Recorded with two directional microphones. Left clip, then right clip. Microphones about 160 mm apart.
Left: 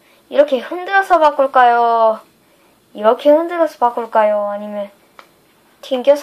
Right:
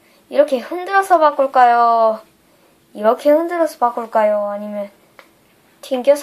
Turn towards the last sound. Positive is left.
turn(degrees=10)  # may be behind; listen again after turning